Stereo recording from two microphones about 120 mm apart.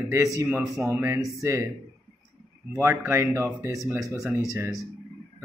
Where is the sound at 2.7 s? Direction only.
25° right (ahead or behind).